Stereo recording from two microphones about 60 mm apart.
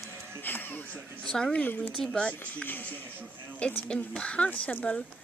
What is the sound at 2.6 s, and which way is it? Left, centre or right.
Speech, left.